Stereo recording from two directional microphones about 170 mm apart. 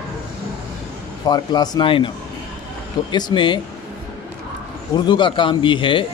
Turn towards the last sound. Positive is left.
turn(degrees=30)  # may be behind; listen again after turning